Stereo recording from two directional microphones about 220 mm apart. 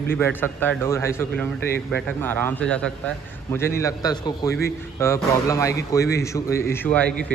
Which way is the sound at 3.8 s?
15° left (ahead or behind).